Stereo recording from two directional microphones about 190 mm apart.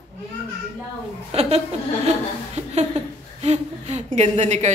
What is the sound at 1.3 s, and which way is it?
Speech, 35° right (ahead or behind).